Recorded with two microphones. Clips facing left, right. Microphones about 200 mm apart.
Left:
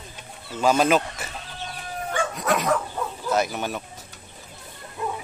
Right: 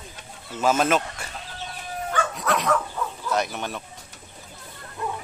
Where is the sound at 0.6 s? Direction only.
5° right (ahead or behind).